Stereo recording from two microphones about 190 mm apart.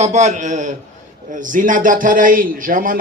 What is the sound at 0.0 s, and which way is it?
A man's voice, 35° right (ahead or behind).